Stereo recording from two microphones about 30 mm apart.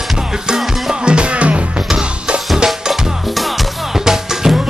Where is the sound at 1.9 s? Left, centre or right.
Right.